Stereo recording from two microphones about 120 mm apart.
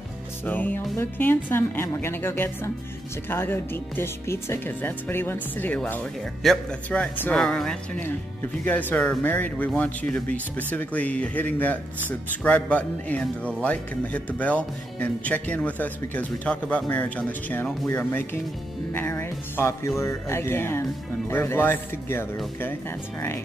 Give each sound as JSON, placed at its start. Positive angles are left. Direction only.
{"t": 0.5, "sound": "a woman's voice", "side_deg": 15}
{"t": 6.4, "sound": "speech", "side_deg": 0}
{"t": 18.9, "sound": "music", "side_deg": 15}
{"t": 20.0, "sound": "a woman's voice", "side_deg": 25}